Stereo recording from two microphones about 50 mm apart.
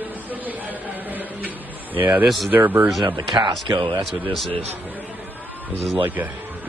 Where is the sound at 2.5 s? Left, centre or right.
Right.